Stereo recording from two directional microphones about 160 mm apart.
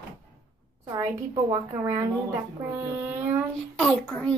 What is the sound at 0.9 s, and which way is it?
A woman's voice, 25° right (ahead or behind).